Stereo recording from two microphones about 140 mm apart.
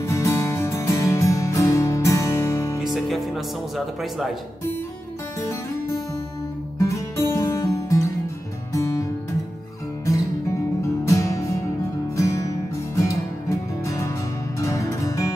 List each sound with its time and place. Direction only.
0.0 s music: 20° left (ahead or behind)
2.8 s speech: centre (ahead or behind)
6.8 s music: 20° left (ahead or behind)
10.8 s music: 20° left (ahead or behind)